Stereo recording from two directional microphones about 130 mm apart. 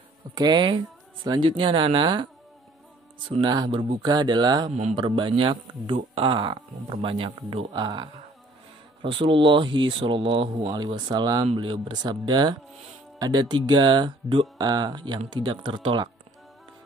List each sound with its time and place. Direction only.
0.3 s speech: 35° right (ahead or behind)
3.3 s speech: 35° right (ahead or behind)
4.6 s speech: 60° right (ahead or behind)
4.9 s speech: 40° right (ahead or behind)